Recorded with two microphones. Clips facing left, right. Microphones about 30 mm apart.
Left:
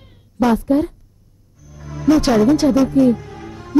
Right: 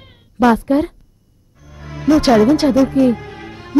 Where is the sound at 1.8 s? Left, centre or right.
Right.